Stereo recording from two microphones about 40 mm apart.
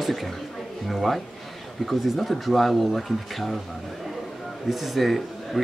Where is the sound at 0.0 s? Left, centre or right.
Centre.